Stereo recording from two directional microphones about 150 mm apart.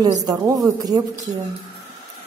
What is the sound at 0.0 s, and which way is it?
Speech, 25° right (ahead or behind).